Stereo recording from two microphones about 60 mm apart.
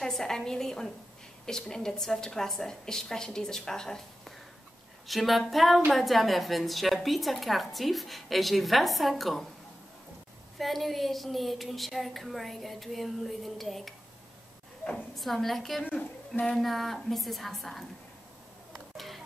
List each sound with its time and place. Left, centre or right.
0.0 s a woman's voice: centre
10.6 s a woman's voice: centre
15.1 s a woman's voice: centre
15.8 s speech: left
16.5 s a woman's voice: centre
18.7 s a sound: centre